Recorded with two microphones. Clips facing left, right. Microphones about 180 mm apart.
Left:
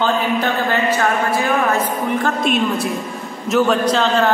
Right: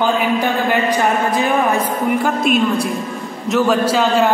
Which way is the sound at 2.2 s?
5° right (ahead or behind).